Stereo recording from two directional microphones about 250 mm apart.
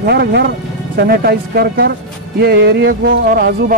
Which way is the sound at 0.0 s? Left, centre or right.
Right.